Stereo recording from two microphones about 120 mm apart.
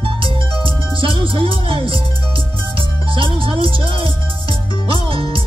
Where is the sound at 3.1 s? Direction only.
45° right (ahead or behind).